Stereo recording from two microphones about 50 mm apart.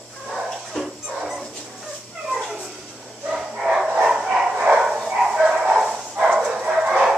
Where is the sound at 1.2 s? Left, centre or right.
Centre.